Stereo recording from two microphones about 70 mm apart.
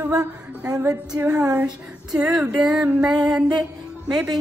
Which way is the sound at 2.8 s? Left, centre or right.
Right.